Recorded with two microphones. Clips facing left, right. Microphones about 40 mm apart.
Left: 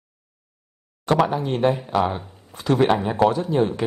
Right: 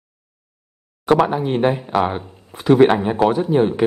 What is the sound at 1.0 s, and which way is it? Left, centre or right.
A man's voice, centre.